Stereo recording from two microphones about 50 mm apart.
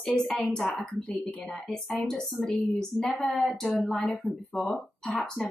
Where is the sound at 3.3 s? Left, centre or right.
Centre.